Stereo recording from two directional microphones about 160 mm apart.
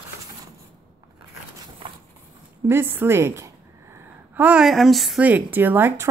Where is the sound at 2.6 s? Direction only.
15° right (ahead or behind).